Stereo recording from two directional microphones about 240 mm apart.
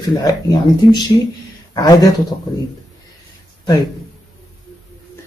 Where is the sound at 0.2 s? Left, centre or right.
Centre.